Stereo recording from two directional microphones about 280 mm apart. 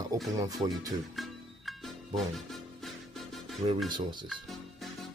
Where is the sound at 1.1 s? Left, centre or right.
Centre.